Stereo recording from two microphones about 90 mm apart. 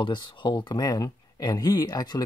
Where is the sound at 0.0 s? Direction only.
60° left (ahead or behind).